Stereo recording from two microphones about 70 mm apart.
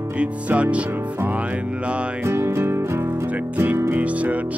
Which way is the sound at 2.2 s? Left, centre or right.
Right.